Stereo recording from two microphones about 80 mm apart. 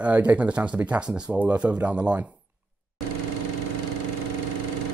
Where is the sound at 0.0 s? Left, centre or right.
Centre.